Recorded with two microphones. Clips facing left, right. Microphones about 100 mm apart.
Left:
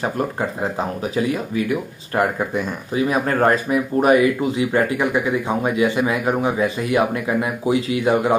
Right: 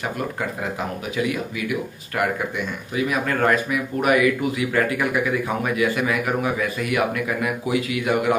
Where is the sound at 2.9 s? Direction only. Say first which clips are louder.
Left 4 dB; 35° left (ahead or behind).